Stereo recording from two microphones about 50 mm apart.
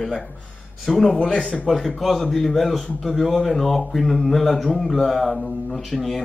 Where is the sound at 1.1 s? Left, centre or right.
Centre.